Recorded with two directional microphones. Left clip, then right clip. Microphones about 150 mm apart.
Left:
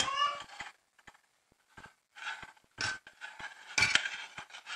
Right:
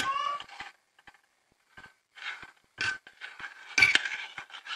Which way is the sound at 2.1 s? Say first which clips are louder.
Right 2 dB; 5° left (ahead or behind).